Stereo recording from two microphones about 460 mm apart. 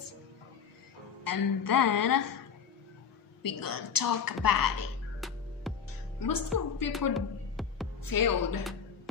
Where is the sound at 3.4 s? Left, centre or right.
Left.